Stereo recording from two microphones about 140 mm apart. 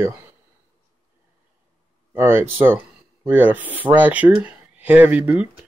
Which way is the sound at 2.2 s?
15° right (ahead or behind).